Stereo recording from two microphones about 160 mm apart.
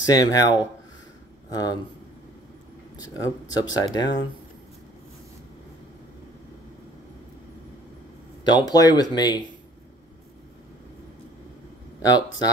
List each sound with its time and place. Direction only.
0.0 s speech: 25° left (ahead or behind)
3.4 s speech: 25° left (ahead or behind)
8.5 s speech: 25° left (ahead or behind)
12.0 s speech: 25° left (ahead or behind)